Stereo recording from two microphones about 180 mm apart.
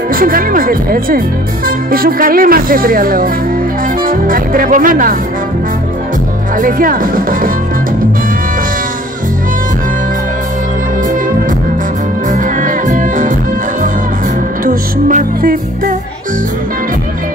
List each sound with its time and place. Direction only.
0.1 s speech: 50° right (ahead or behind)
6.6 s speech: 50° right (ahead or behind)
12.3 s music: 45° right (ahead or behind)
14.6 s music: 50° right (ahead or behind)